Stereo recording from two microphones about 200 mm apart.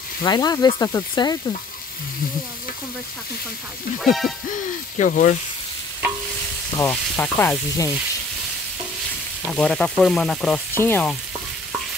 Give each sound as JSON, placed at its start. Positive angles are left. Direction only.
{"t": 0.2, "sound": "speech", "side_deg": 20}
{"t": 4.0, "sound": "frying", "side_deg": 0}
{"t": 4.9, "sound": "speech", "side_deg": 40}
{"t": 6.8, "sound": "sizzle", "side_deg": 10}
{"t": 9.5, "sound": "frying", "side_deg": 5}